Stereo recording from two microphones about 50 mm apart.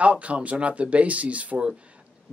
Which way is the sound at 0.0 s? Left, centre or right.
Right.